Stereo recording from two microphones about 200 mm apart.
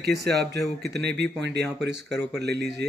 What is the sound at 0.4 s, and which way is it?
Speech, 55° right (ahead or behind).